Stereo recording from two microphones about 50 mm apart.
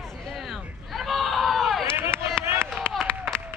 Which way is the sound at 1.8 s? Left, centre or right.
Left.